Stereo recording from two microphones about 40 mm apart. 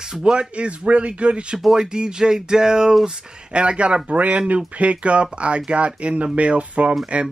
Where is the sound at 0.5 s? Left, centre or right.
Right.